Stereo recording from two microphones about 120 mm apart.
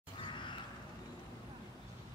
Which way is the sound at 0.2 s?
40° left (ahead or behind).